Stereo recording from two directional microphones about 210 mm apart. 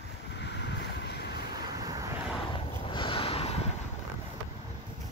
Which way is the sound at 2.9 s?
25° left (ahead or behind).